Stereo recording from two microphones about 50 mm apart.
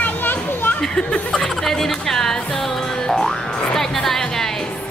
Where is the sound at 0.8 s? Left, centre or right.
Centre.